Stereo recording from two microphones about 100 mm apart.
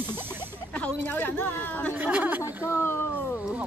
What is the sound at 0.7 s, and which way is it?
Speech, 15° left (ahead or behind).